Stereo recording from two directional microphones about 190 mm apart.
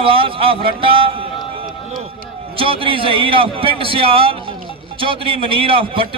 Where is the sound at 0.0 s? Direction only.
30° right (ahead or behind).